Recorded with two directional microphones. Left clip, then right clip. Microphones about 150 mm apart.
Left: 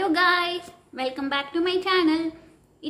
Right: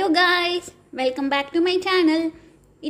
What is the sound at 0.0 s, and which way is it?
A woman's voice, 35° right (ahead or behind).